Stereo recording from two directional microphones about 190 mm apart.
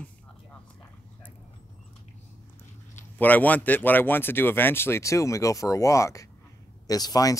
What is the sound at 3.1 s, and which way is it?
A man's voice, 10° left (ahead or behind).